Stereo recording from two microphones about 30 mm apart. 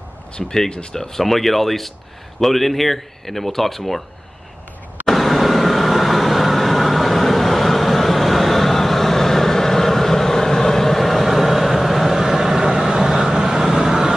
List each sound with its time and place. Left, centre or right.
0.4 s speech: centre
1.2 s speech: centre
5.0 s vehicle: centre; by 14.1 s right